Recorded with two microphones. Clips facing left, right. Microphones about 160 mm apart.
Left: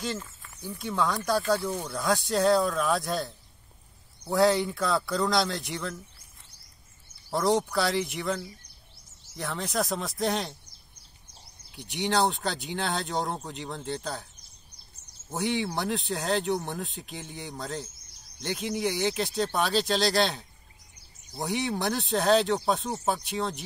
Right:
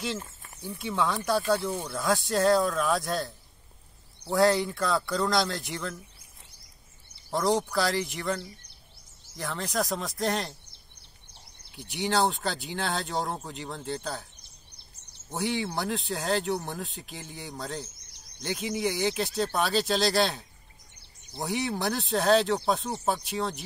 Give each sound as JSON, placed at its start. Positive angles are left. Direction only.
{"t": 0.2, "sound": "a sound", "side_deg": -30}
{"t": 0.7, "sound": "speech", "side_deg": -5}
{"t": 7.2, "sound": "speech", "side_deg": 0}
{"t": 9.4, "sound": "speech", "side_deg": 0}
{"t": 11.7, "sound": "speech", "side_deg": 0}
{"t": 15.2, "sound": "speech", "side_deg": 0}